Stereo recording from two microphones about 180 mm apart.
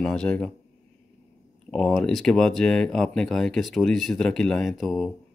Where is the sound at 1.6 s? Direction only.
Centre (ahead or behind).